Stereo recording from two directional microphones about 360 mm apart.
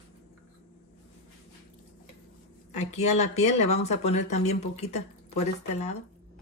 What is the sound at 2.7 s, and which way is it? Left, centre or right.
Speech, centre.